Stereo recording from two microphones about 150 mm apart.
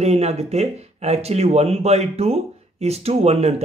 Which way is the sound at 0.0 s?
45° right (ahead or behind).